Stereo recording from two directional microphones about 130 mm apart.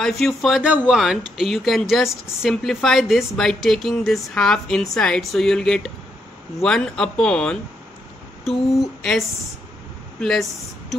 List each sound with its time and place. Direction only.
0.0 s speech: centre (ahead or behind)